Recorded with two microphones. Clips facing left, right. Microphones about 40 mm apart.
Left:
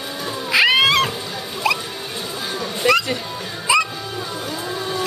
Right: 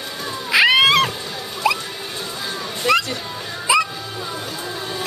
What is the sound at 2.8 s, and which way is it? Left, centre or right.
Speech, left.